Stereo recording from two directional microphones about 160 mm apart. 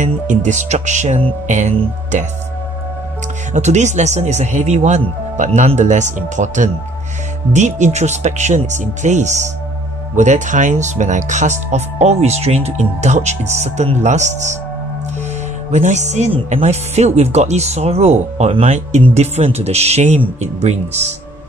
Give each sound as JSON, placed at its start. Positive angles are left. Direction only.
{"t": 0.0, "sound": "speech", "side_deg": -50}
{"t": 3.5, "sound": "speech", "side_deg": -45}
{"t": 15.7, "sound": "speech", "side_deg": -45}